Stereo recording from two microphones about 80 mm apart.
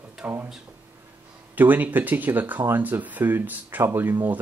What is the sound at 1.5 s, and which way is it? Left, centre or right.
Speech, right.